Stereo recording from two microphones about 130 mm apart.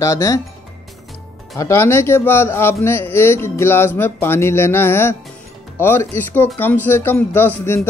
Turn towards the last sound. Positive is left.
turn(degrees=20)  # may be behind; listen again after turning